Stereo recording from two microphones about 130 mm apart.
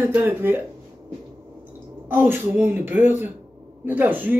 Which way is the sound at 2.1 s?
15° right (ahead or behind).